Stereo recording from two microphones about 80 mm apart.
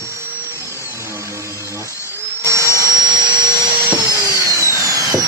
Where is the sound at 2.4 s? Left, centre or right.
Right.